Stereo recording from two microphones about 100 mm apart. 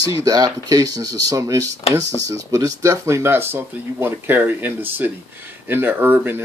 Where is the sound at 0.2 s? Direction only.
40° right (ahead or behind).